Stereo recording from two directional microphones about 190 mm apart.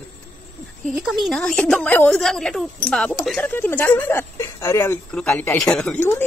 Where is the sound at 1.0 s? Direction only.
Centre (ahead or behind).